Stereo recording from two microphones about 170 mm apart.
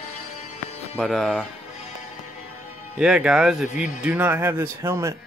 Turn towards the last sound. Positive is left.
turn(degrees=-15)  # may be behind; listen again after turning